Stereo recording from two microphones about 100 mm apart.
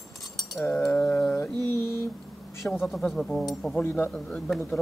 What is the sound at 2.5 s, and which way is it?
Speech, 25° left (ahead or behind).